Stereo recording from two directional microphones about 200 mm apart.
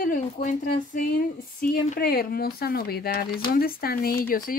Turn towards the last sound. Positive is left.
turn(degrees=45)  # may be behind; listen again after turning